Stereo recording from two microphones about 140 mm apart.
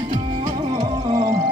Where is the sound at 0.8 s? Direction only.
25° right (ahead or behind).